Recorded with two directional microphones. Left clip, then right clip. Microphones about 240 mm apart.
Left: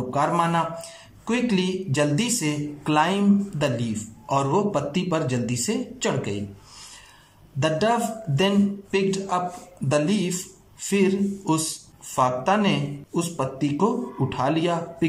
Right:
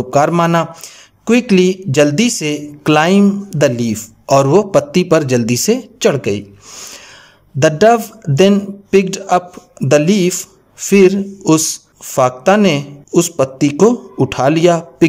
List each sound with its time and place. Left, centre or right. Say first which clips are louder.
0.1 s a man's voice: right 10 dB; right